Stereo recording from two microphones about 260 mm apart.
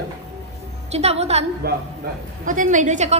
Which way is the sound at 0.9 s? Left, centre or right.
Right.